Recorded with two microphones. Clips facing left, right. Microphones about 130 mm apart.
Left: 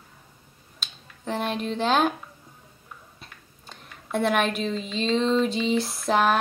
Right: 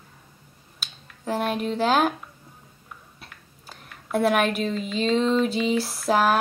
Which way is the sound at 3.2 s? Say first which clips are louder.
Right 1 dB; 5° right (ahead or behind).